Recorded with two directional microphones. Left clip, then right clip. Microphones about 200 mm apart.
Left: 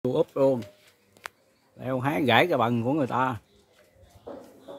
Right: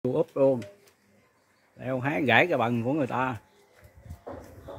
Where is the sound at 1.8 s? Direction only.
20° left (ahead or behind).